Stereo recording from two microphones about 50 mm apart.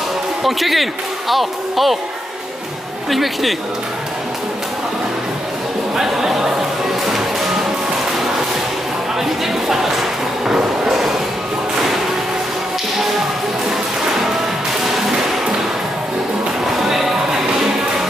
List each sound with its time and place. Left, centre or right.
0.4 s speech: centre
3.1 s speech: centre
5.9 s a sound: centre
7.1 s music: centre
9.2 s a sound: centre
10.5 s music: centre
16.6 s music: centre